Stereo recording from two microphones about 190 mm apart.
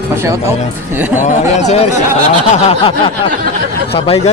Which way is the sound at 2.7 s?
30° left (ahead or behind).